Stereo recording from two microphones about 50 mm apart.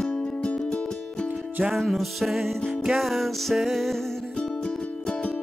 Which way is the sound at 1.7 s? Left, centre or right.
Centre.